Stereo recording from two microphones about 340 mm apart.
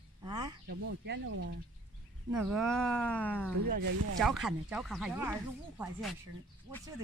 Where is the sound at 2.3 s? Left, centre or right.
Centre.